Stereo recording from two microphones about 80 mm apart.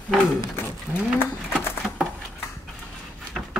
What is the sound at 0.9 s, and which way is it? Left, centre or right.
Speech, centre.